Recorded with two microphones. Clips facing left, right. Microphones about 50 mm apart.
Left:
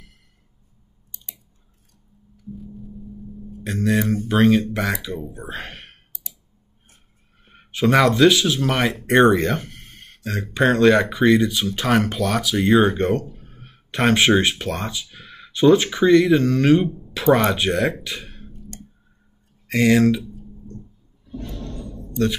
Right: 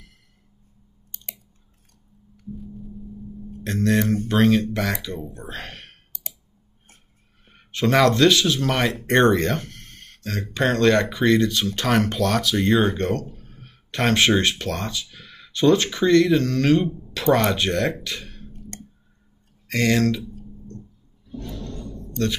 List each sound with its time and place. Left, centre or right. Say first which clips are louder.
1.1 s squish: right 2 dB; right
2.6 s gong: even; centre
3.6 s speech: even; centre
7.4 s speech: left 3 dB; centre
18.0 s a sound: left 1 dB; centre
18.5 s a sound: even; right
19.7 s speech: left 4 dB; centre
21.5 s music: right 1 dB; centre
21.7 s a sound: left 5 dB; centre